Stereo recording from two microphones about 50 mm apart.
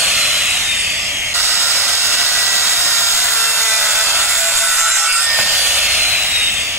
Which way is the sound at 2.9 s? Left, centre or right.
Centre.